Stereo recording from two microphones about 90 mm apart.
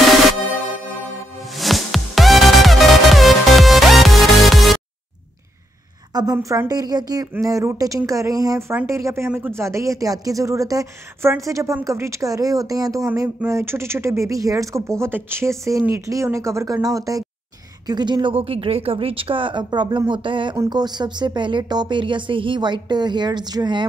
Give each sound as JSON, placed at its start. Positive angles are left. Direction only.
{"t": 1.6, "sound": "music", "side_deg": 0}
{"t": 6.3, "sound": "speech", "side_deg": -25}
{"t": 6.7, "sound": "a woman's voice", "side_deg": -45}
{"t": 15.0, "sound": "a woman's voice", "side_deg": -25}
{"t": 17.8, "sound": "speech", "side_deg": -55}
{"t": 20.7, "sound": "speech", "side_deg": -55}